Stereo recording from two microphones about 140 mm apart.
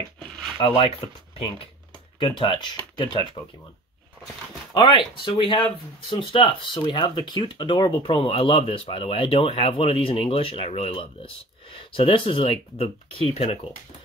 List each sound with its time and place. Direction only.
0.6 s speech: 35° left (ahead or behind)
2.1 s speech: 35° left (ahead or behind)
4.7 s speech: 35° left (ahead or behind)